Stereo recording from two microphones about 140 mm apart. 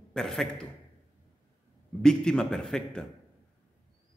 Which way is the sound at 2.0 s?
5° left (ahead or behind).